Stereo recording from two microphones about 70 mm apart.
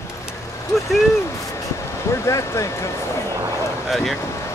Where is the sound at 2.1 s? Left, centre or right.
Left.